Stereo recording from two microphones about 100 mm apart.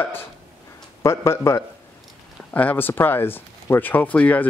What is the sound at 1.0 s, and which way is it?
Speech, 25° left (ahead or behind).